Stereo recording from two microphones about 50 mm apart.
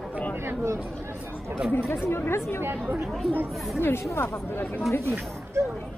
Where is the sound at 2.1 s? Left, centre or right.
Left.